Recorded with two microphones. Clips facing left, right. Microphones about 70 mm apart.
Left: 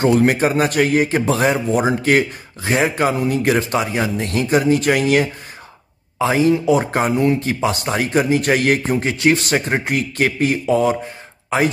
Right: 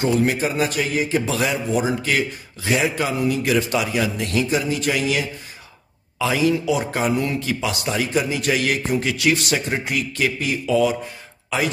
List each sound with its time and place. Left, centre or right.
0.0 s a man's voice: left
1.3 s a man's voice: left
6.1 s a man's voice: left